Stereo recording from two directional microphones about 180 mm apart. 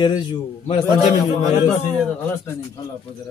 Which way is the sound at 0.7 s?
30° left (ahead or behind).